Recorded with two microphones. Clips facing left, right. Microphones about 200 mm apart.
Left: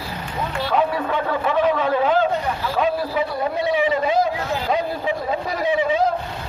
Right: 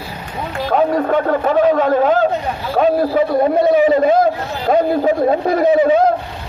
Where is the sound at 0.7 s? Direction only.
45° right (ahead or behind).